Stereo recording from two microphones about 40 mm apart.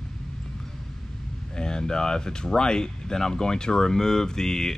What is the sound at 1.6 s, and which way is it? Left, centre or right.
Speech, centre.